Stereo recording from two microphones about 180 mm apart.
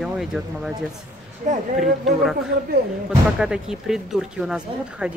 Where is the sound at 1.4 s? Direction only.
40° right (ahead or behind).